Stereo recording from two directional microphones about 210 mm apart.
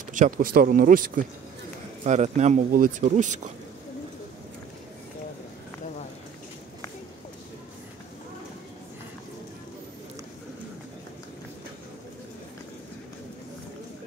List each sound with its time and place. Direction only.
0.0 s speech: 40° right (ahead or behind)